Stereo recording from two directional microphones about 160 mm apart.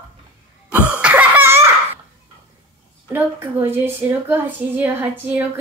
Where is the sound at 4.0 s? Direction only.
15° right (ahead or behind).